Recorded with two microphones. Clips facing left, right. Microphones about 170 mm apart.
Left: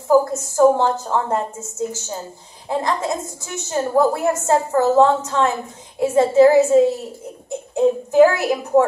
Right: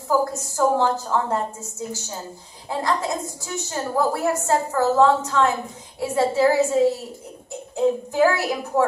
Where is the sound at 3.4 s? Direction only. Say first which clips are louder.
Left 5 dB; 20° left (ahead or behind).